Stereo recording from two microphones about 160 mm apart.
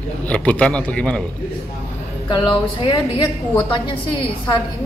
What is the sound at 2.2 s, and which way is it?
A woman's voice, 30° left (ahead or behind).